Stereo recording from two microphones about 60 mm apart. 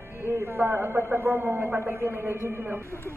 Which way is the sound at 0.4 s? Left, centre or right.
Right.